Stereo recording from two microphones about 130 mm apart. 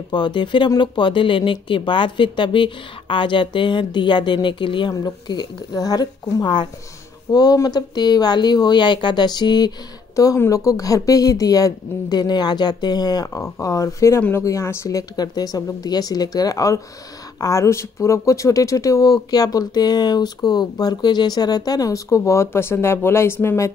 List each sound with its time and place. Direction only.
0.1 s speech: 35° left (ahead or behind); by 23.7 s 20° left (ahead or behind)